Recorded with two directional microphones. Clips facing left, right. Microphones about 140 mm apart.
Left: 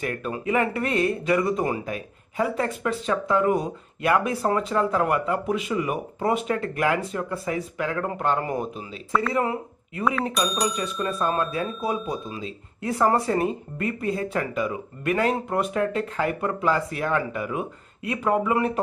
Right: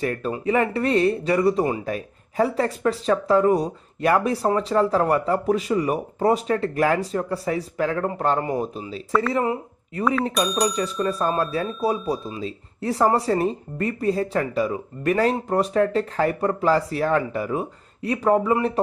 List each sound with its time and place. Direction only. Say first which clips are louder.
0.0 s speech: right 4 dB; 30° right (ahead or behind)
10.0 s speech: right 2 dB; centre (ahead or behind)
11.1 s speech: even; 35° right (ahead or behind)